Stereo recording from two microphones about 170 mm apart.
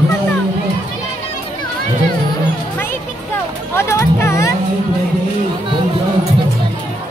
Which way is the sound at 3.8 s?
15° left (ahead or behind).